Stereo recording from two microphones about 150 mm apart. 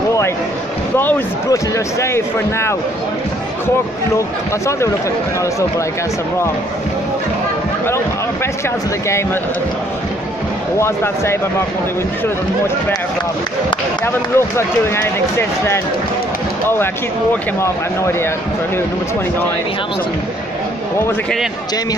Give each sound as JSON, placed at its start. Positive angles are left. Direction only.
{"t": 0.9, "sound": "speech", "side_deg": 15}
{"t": 4.6, "sound": "speech", "side_deg": 20}
{"t": 14.0, "sound": "speech", "side_deg": 15}